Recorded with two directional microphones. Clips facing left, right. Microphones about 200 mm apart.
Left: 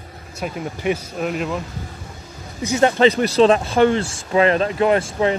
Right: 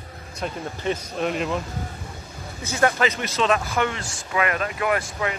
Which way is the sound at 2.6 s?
15° left (ahead or behind).